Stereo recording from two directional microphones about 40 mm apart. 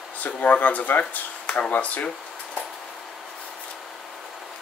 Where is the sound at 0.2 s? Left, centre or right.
Left.